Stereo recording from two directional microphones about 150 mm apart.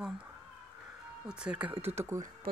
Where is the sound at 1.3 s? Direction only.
5° right (ahead or behind).